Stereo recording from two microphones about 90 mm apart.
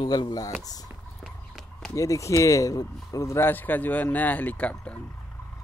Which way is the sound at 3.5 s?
20° left (ahead or behind).